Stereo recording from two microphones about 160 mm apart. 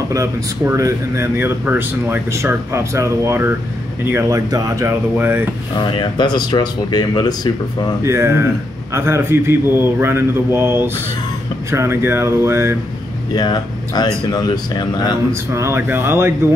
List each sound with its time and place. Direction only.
0.1 s speech: 20° right (ahead or behind)
5.9 s speech: 30° left (ahead or behind)
8.0 s speech: 15° right (ahead or behind)
13.3 s speech: 25° left (ahead or behind)
15.5 s speech: 15° right (ahead or behind)